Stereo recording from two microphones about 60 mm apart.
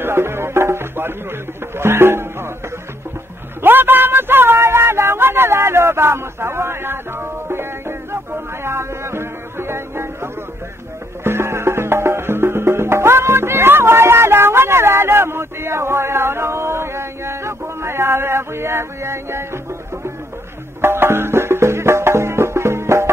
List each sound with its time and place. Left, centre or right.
0.0 s music: right
3.6 s a sound: right
11.2 s music: right
20.8 s music: right